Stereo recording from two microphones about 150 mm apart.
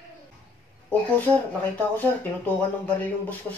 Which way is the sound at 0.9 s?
10° left (ahead or behind).